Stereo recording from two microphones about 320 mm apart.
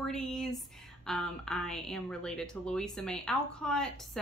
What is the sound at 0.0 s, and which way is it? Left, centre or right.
Speech, centre.